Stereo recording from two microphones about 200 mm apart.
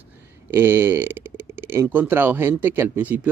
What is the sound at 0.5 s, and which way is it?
Speech, 10° right (ahead or behind).